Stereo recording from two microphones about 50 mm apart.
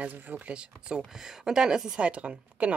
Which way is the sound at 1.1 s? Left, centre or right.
Centre.